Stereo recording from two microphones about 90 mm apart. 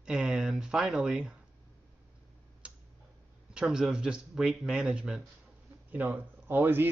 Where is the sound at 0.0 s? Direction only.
10° right (ahead or behind).